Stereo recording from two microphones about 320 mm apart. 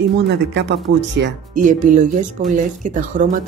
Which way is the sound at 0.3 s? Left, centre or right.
Right.